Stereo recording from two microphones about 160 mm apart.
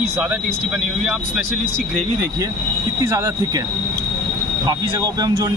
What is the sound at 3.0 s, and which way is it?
Speech, 20° right (ahead or behind).